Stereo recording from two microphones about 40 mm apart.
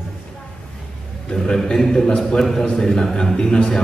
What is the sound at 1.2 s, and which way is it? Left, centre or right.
A man's voice, centre.